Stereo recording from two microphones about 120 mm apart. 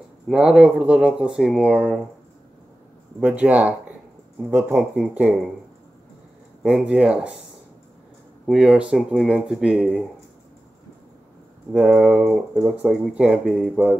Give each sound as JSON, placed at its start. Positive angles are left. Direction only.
{"t": 0.3, "sound": "speech", "side_deg": -5}
{"t": 3.2, "sound": "speech", "side_deg": -10}
{"t": 6.6, "sound": "speech", "side_deg": -10}
{"t": 8.5, "sound": "speech", "side_deg": -5}
{"t": 11.7, "sound": "speech", "side_deg": -5}